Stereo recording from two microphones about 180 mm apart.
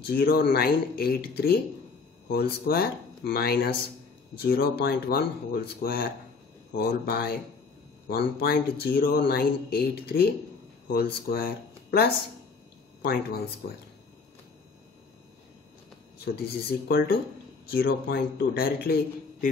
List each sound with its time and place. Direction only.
0.0 s a man's voice: 60° left (ahead or behind)
16.3 s a man's voice: 65° left (ahead or behind)